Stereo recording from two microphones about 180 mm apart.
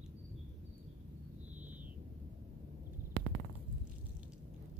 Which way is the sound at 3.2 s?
90° right.